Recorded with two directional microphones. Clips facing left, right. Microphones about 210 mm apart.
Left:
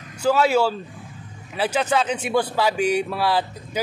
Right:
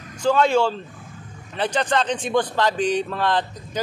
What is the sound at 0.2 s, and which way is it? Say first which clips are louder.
A man's voice: even; 5° left (ahead or behind).